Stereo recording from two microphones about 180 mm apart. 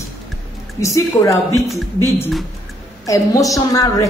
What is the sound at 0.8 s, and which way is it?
A woman's voice, 15° left (ahead or behind).